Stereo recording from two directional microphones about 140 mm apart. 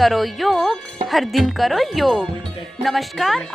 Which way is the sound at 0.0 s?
Centre (ahead or behind).